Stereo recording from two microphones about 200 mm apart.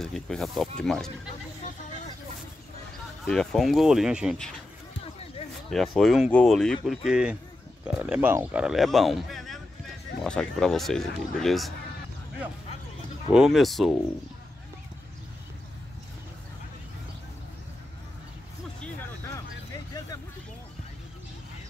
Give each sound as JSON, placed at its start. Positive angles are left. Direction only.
{"t": 0.0, "sound": "a man's voice", "side_deg": 0}
{"t": 3.3, "sound": "a man's voice", "side_deg": 0}
{"t": 5.7, "sound": "a man's voice", "side_deg": 0}
{"t": 13.3, "sound": "a man's voice", "side_deg": 0}